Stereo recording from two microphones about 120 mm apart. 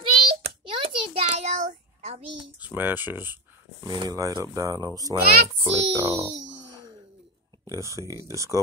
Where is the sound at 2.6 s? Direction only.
15° right (ahead or behind).